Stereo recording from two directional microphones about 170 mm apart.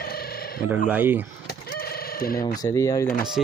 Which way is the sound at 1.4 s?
60° left (ahead or behind).